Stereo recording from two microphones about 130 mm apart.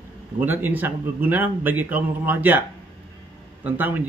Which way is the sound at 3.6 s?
15° right (ahead or behind).